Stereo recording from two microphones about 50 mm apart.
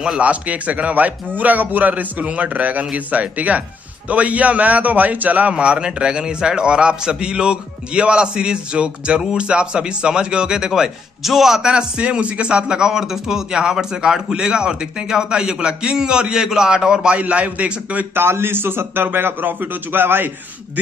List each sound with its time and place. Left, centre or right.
0.2 s a man's voice: right
5.5 s a man's voice: centre
11.6 s a man's voice: centre
17.2 s a man's voice: right
18.1 s a man's voice: right